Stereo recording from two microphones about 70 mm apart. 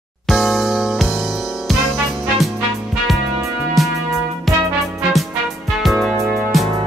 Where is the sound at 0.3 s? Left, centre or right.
Centre.